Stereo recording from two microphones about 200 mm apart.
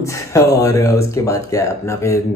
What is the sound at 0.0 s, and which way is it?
Speech, 15° left (ahead or behind).